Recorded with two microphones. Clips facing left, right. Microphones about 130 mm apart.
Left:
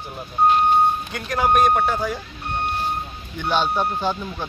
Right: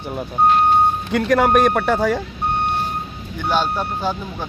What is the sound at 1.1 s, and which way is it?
A man's voice, 70° right (ahead or behind).